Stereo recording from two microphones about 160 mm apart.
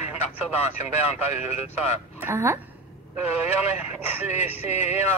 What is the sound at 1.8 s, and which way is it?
Speech, 15° right (ahead or behind).